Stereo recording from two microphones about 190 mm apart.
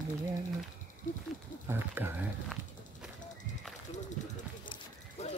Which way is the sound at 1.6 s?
10° right (ahead or behind).